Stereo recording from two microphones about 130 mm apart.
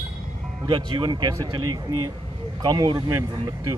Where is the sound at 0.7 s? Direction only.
40° right (ahead or behind).